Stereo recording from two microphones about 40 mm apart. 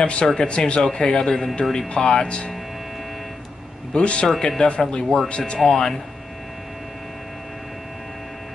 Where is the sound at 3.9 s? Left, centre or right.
Left.